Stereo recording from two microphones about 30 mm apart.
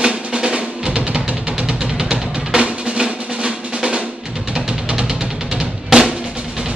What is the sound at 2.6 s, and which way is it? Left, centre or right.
Drum, right.